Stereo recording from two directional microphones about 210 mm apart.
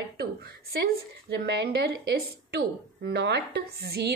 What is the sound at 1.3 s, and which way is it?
A woman's voice, 55° right (ahead or behind).